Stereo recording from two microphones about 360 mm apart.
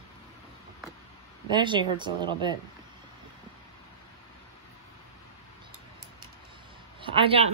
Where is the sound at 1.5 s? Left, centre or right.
Centre.